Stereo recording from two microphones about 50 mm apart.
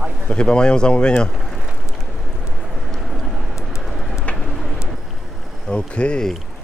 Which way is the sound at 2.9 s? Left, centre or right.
Centre.